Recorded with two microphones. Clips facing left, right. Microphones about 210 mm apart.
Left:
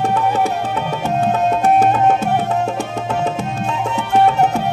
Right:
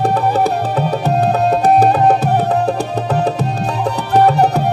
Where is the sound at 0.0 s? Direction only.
35° right (ahead or behind).